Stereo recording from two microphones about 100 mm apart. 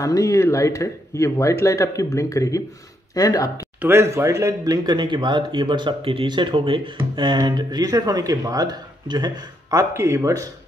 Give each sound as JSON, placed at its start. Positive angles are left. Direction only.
{"t": 0.0, "sound": "speech", "side_deg": 35}
{"t": 3.8, "sound": "speech", "side_deg": -25}
{"t": 7.3, "sound": "speech", "side_deg": -45}